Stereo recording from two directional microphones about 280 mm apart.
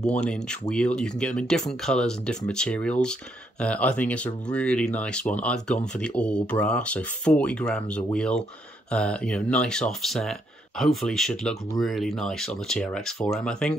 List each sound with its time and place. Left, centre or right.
0.0 s speech: centre